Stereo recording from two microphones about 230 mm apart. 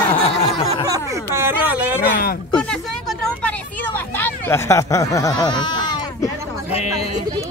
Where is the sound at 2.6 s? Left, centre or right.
Centre; by 7.0 s left.